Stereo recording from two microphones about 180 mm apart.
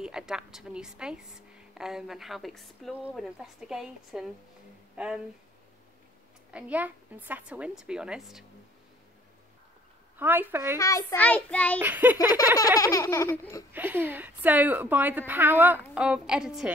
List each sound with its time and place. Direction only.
0.0 s a woman's voice: 5° right (ahead or behind)
6.5 s a woman's voice: 10° right (ahead or behind)
10.1 s a woman's voice: 10° right (ahead or behind)
10.8 s laughter: 20° left (ahead or behind)
11.1 s child singing: 10° left (ahead or behind)
11.8 s a woman's voice: 10° right (ahead or behind)
12.3 s laughter: 20° left (ahead or behind)
13.7 s a woman's voice: 10° right (ahead or behind)